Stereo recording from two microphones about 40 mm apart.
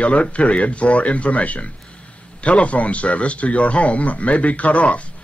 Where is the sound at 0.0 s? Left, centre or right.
Left.